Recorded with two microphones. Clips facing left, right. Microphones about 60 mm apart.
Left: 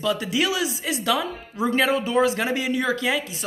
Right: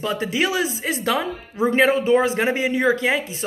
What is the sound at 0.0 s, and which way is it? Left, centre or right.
Speech, right.